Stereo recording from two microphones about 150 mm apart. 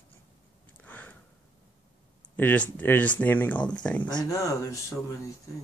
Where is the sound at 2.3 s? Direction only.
10° left (ahead or behind).